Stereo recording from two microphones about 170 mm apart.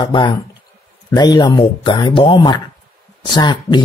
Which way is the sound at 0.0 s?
30° left (ahead or behind).